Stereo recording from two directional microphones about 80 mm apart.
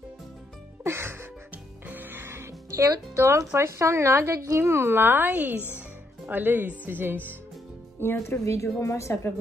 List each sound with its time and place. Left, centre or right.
0.8 s music: right
3.2 s a woman's voice: right
8.0 s a woman's voice: left